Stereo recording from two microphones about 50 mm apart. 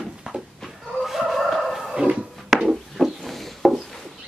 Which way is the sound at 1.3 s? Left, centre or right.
Centre.